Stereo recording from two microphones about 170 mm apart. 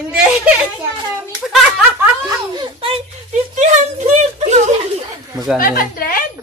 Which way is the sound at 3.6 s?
45° right (ahead or behind).